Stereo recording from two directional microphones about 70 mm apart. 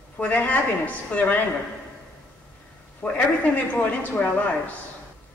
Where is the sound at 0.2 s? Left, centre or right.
Left.